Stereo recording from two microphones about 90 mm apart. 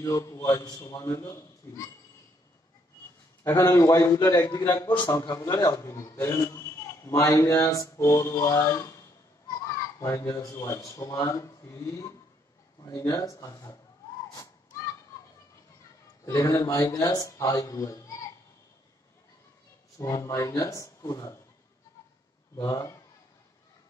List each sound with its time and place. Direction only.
0.0 s a man's voice: 35° left (ahead or behind)
3.4 s a man's voice: 30° left (ahead or behind)
4.7 s a man's voice: 60° left (ahead or behind)
5.3 s a man's voice: 40° left (ahead or behind)
9.9 s a man's voice: 35° left (ahead or behind)
16.4 s a man's voice: 45° left (ahead or behind)
20.0 s a man's voice: 35° left (ahead or behind)
22.6 s a man's voice: 40° left (ahead or behind)